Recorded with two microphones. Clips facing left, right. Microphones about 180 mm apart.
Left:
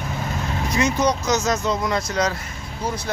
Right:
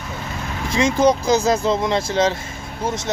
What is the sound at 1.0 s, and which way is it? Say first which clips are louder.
Speech: right 5 dB; 30° right (ahead or behind).